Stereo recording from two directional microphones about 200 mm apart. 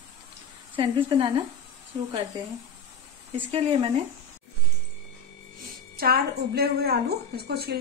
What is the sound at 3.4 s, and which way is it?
Speech, 25° right (ahead or behind).